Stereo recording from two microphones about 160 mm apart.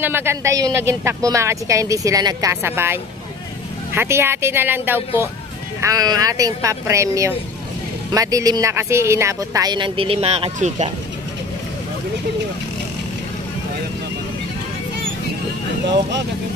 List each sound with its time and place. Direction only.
0.0 s a woman's voice: 15° right (ahead or behind); by 10.9 s 45° right (ahead or behind)